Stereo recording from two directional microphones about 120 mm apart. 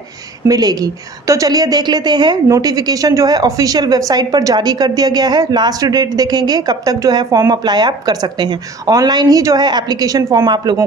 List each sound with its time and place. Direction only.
0.5 s a woman's voice: 35° right (ahead or behind)